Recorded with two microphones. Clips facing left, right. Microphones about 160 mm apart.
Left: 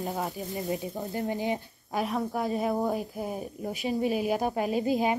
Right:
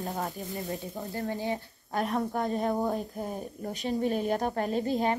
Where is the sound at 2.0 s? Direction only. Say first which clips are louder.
Even; 5° left (ahead or behind).